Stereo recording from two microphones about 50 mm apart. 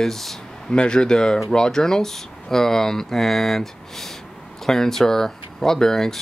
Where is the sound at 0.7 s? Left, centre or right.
Centre.